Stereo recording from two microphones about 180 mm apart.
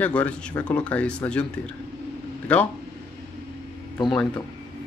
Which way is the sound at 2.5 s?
5° left (ahead or behind).